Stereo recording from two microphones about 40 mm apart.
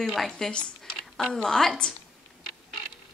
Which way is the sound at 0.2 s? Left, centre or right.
Centre.